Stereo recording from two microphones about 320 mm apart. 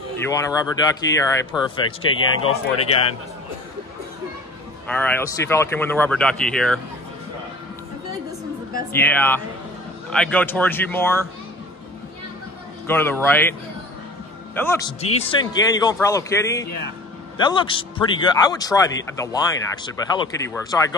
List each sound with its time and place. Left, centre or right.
0.2 s a man's voice: centre
2.0 s speech: left
4.8 s speech: centre
8.9 s speech: centre
12.8 s a man's voice: centre
15.0 s a man's voice: centre